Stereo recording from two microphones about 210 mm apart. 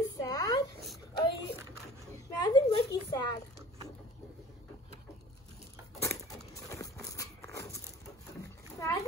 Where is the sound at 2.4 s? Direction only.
20° left (ahead or behind).